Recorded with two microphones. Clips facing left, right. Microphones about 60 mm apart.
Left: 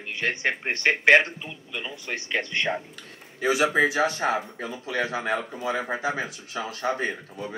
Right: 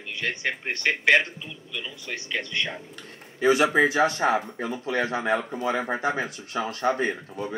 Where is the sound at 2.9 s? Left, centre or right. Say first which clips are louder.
Right 3 dB; right.